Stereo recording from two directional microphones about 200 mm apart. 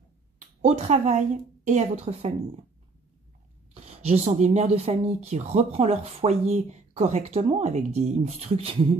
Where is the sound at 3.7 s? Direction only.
30° right (ahead or behind).